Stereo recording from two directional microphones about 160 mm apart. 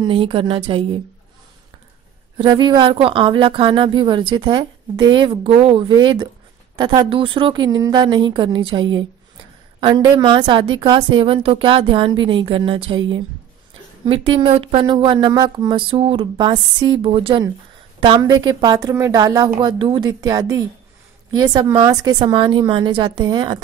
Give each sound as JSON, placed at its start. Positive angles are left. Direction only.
{"t": 0.0, "sound": "a woman's voice", "side_deg": -35}
{"t": 2.3, "sound": "a woman's voice", "side_deg": -30}